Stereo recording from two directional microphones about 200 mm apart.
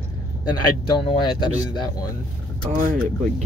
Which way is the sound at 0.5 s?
20° left (ahead or behind).